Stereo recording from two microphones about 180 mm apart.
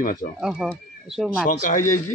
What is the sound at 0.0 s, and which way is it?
Speech, 50° left (ahead or behind).